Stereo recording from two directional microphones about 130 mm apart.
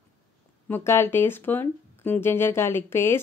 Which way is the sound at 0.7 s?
20° left (ahead or behind).